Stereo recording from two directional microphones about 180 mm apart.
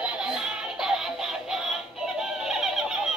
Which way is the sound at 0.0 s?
5° right (ahead or behind).